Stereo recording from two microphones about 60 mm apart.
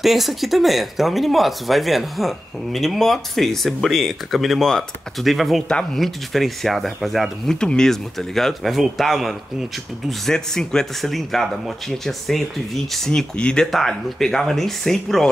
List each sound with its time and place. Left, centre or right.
0.0 s speech: centre
13.4 s speech: centre
13.7 s speech: centre